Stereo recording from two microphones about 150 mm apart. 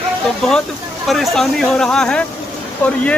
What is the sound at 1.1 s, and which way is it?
Speech, centre (ahead or behind).